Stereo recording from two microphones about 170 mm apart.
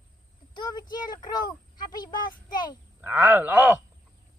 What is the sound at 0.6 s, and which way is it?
A child's voice, 25° left (ahead or behind).